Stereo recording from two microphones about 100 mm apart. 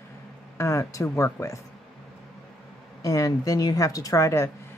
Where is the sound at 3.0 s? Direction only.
35° left (ahead or behind).